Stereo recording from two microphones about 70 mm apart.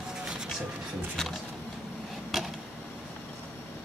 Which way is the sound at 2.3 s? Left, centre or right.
Centre.